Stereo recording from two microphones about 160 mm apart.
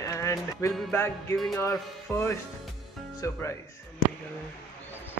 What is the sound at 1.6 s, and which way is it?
Music, 15° left (ahead or behind).